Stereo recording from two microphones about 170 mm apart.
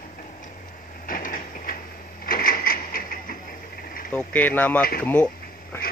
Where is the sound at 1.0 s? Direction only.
50° left (ahead or behind).